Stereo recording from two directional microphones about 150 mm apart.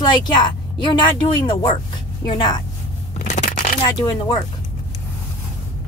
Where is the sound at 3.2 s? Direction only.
55° left (ahead or behind).